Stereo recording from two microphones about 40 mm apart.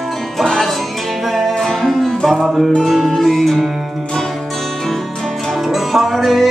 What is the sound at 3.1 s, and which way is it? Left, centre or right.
Music, centre.